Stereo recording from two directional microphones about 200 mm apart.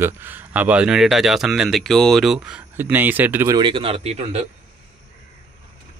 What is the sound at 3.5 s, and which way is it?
Speech, 25° right (ahead or behind).